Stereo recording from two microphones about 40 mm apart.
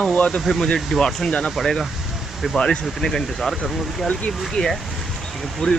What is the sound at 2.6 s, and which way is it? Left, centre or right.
Speech, left.